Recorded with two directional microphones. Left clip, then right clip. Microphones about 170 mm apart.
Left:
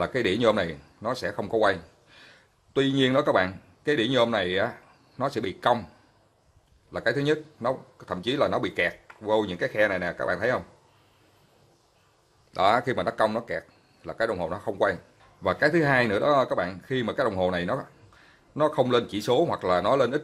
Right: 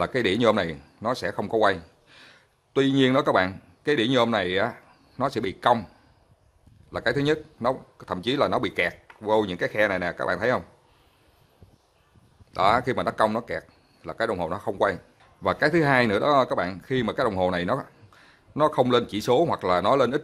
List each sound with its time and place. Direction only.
0.0 s speech: 25° right (ahead or behind)
6.9 s speech: 25° right (ahead or behind)
12.5 s speech: 20° right (ahead or behind)